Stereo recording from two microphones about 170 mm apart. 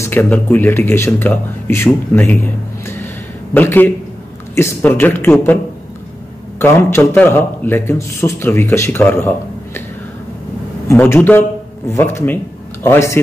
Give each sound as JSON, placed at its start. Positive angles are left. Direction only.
{"t": 0.0, "sound": "a man's voice", "side_deg": 10}
{"t": 2.2, "sound": "a sound", "side_deg": 10}
{"t": 3.5, "sound": "a man's voice", "side_deg": 10}
{"t": 6.6, "sound": "a man's voice", "side_deg": 15}
{"t": 10.9, "sound": "a man's voice", "side_deg": 15}